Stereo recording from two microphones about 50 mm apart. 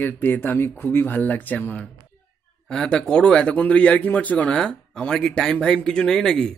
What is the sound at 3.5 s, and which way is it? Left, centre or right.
Speech, left.